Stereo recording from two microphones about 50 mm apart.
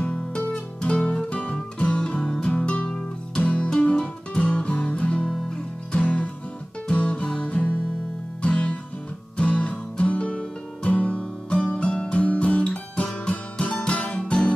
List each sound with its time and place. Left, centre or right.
0.0 s music: left